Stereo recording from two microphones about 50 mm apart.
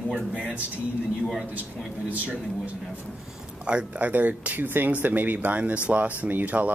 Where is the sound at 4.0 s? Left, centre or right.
Right.